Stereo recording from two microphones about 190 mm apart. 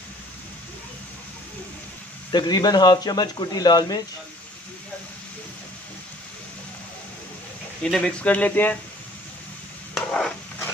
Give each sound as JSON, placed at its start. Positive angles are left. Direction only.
{"t": 2.3, "sound": "speech", "side_deg": 20}
{"t": 7.8, "sound": "speech", "side_deg": 5}
{"t": 9.9, "sound": "a sound", "side_deg": 10}